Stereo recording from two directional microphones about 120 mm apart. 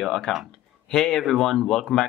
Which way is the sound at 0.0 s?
5° left (ahead or behind).